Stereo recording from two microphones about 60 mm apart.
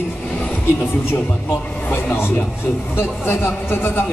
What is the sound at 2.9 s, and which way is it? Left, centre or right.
A man's voice, left.